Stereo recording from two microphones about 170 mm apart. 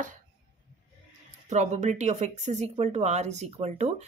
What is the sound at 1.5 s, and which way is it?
Speech, 45° right (ahead or behind).